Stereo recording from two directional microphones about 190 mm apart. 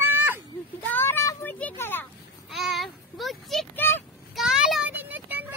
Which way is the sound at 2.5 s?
Centre (ahead or behind).